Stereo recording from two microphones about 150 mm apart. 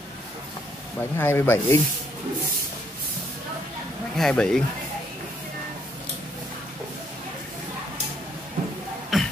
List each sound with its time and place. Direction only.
1.1 s speech: 15° left (ahead or behind)
4.2 s speech: 5° left (ahead or behind)
9.1 s cough: centre (ahead or behind)